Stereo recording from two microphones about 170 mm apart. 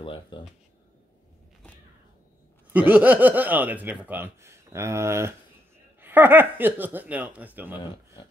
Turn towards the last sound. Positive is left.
turn(degrees=-10)  # may be behind; listen again after turning